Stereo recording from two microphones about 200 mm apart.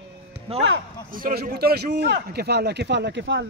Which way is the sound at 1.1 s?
45° right (ahead or behind).